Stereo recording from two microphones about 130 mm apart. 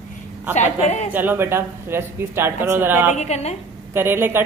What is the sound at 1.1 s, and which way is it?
A man's voice, 15° right (ahead or behind).